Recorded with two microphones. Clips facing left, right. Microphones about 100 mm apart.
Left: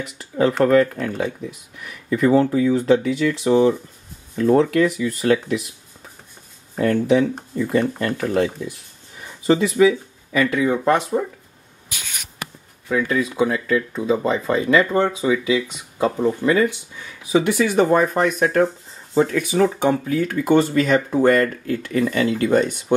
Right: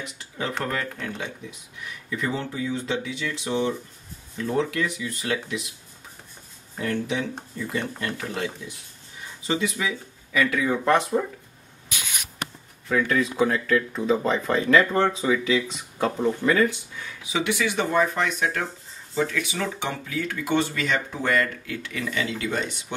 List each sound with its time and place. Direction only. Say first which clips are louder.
0.2 s speech: left 13 dB; 45° left (ahead or behind)
6.8 s speech: left 10 dB; 40° left (ahead or behind)
9.5 s speech: left 11 dB; 35° left (ahead or behind); by 11.1 s 15° left (ahead or behind)
12.8 s speech: left 2 dB; 10° left (ahead or behind)
17.2 s speech: left 8 dB; 45° left (ahead or behind)